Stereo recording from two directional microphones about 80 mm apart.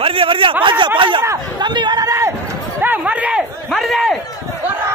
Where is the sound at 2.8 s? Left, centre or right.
Right.